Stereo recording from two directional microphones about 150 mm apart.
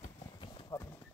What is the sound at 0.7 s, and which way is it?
Clip-clop, 30° left (ahead or behind).